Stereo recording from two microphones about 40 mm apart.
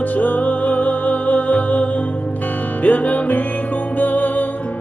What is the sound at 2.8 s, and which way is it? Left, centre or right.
Music, left.